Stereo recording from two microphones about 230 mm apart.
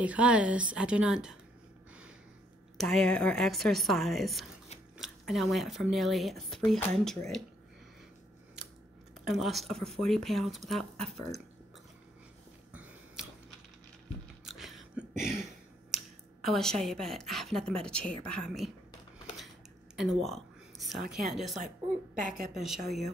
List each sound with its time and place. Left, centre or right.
0.0 s speech: centre
2.8 s speech: centre
9.2 s speech: centre
14.4 s a sound: centre
16.4 s speech: centre
20.0 s a sound: centre
21.1 s speech: centre
22.1 s a woman's voice: right
22.5 s speech: centre